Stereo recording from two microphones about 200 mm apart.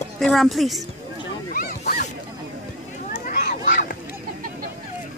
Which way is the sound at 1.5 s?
45° left (ahead or behind).